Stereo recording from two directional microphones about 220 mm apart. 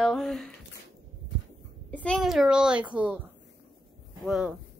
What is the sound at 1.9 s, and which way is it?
A child's voice, 5° left (ahead or behind).